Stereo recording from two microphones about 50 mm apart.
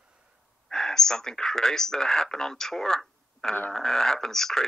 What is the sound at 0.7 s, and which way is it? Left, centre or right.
Speech, centre.